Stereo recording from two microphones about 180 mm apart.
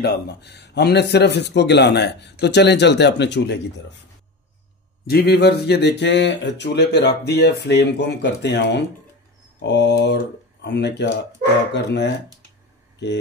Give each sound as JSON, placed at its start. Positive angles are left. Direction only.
{"t": 0.0, "sound": "a man's voice", "side_deg": 65}
{"t": 5.0, "sound": "a man's voice", "side_deg": 60}